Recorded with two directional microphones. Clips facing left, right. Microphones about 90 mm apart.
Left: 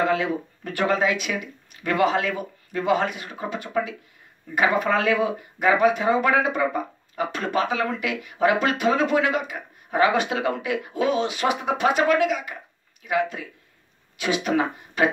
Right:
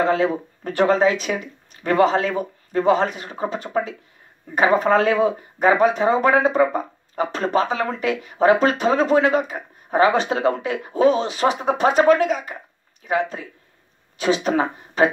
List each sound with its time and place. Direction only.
0.0 s speech: 35° right (ahead or behind)